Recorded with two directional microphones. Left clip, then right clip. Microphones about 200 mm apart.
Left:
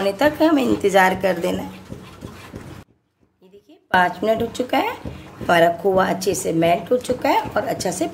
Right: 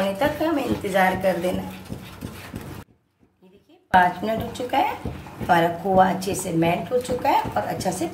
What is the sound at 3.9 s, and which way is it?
A woman's voice, 50° left (ahead or behind).